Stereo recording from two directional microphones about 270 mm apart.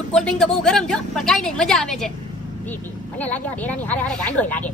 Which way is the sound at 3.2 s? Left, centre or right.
Centre.